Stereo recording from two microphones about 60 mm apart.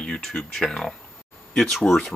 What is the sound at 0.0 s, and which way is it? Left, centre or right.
Speech, centre.